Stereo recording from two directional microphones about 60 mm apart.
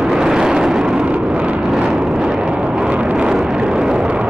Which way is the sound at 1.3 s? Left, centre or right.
Right.